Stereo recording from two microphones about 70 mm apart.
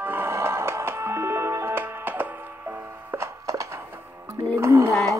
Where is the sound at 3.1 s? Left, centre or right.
Right.